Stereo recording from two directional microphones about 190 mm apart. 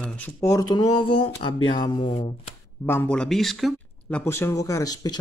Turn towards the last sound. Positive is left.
turn(degrees=20)  # may be behind; listen again after turning